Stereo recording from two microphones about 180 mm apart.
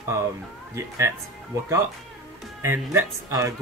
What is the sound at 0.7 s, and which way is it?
Speech, 15° right (ahead or behind).